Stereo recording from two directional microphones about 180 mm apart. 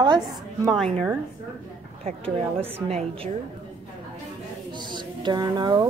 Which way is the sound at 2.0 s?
30° right (ahead or behind).